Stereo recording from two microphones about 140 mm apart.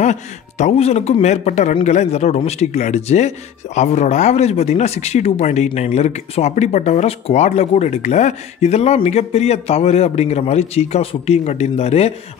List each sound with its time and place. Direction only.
0.0 s speech: 55° left (ahead or behind)